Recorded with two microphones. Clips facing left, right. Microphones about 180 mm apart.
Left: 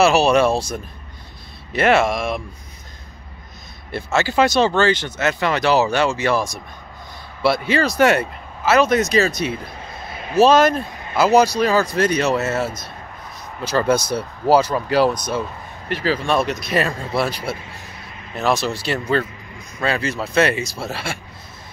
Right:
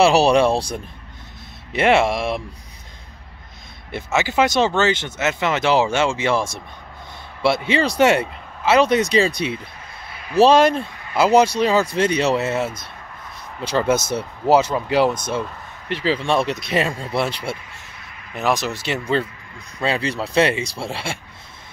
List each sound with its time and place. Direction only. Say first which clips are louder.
0.0 s speech: even; 30° right (ahead or behind)
3.9 s speech: left 1 dB; 15° right (ahead or behind)
9.5 s a sound: left 2 dB; 25° left (ahead or behind)
10.4 s speech: even; 25° right (ahead or behind)
13.7 s speech: left 1 dB; 25° right (ahead or behind)